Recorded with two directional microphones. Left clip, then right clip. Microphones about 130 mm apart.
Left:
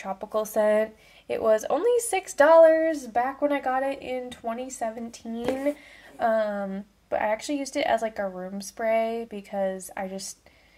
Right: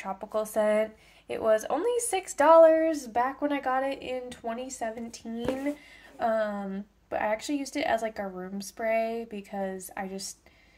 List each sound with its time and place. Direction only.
0.3 s a woman's voice: 30° left (ahead or behind)
2.7 s speech: 15° left (ahead or behind)